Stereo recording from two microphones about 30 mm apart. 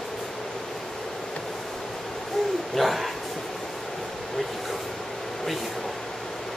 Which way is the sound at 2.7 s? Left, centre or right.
Centre.